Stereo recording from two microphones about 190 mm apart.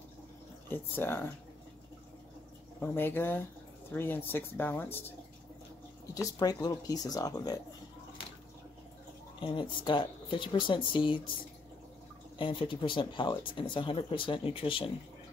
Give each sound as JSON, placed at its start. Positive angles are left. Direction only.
{"t": 0.7, "sound": "speech", "side_deg": 10}
{"t": 2.8, "sound": "speech", "side_deg": 10}
{"t": 6.1, "sound": "speech", "side_deg": 20}
{"t": 9.4, "sound": "speech", "side_deg": 25}
{"t": 12.4, "sound": "speech", "side_deg": 25}